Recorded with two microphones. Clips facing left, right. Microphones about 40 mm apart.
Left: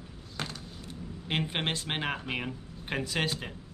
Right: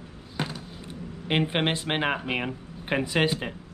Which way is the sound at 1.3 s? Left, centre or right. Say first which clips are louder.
Right 6 dB; right.